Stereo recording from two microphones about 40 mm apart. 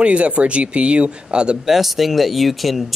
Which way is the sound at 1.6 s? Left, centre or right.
Centre.